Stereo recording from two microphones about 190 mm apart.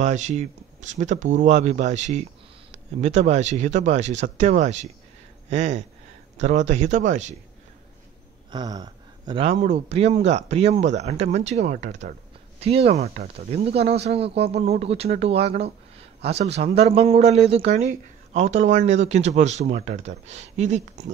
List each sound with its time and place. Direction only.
0.0 s speech: 40° right (ahead or behind)
8.5 s speech: 20° right (ahead or behind)